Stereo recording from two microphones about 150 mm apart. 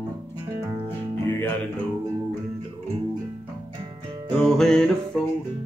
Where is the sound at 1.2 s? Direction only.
15° left (ahead or behind).